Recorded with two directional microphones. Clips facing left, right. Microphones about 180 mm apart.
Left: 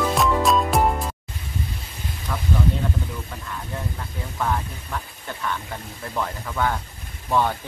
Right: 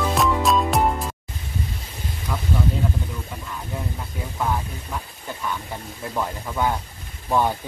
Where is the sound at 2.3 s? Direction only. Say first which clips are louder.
Right 1 dB; 5° right (ahead or behind).